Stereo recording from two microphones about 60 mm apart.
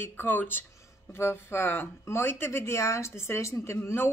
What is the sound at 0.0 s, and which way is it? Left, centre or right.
Speech, left.